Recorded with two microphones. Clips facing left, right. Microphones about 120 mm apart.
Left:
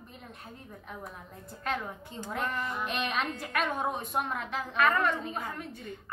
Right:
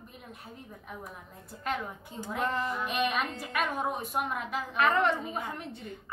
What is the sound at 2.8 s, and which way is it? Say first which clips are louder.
A woman's voice: right 1 dB; 5° right (ahead or behind).